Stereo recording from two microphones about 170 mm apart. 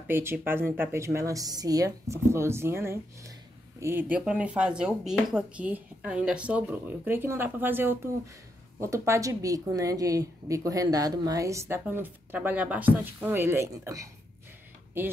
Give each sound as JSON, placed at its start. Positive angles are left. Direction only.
{"t": 0.1, "sound": "speech", "side_deg": -15}